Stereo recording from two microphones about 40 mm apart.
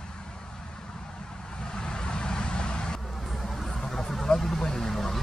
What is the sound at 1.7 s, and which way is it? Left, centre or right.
Vehicle, centre.